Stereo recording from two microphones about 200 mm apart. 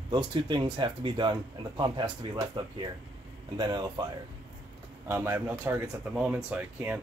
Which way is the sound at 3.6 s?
20° right (ahead or behind).